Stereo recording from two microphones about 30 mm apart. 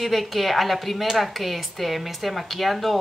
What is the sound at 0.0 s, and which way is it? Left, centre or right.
Speech, centre.